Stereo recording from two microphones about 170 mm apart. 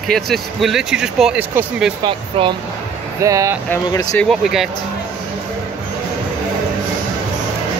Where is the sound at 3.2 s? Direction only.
20° right (ahead or behind).